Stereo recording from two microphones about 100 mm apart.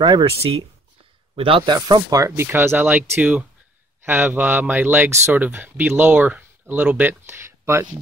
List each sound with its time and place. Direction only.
0.0 s speech: 50° right (ahead or behind)
1.3 s a man's voice: 65° right (ahead or behind)
2.0 s speech: 35° right (ahead or behind)
2.4 s speech: 20° right (ahead or behind)